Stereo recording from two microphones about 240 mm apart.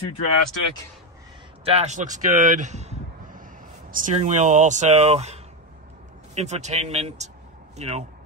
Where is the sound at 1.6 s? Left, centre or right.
Right.